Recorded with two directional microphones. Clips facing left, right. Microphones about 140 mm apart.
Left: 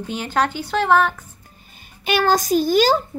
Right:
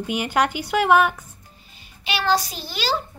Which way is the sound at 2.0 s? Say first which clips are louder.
Left 4 dB; 45° left (ahead or behind).